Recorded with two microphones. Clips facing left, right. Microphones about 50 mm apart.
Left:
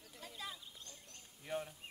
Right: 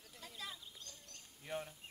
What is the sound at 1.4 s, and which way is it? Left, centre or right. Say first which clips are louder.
Speech: left 2 dB; centre.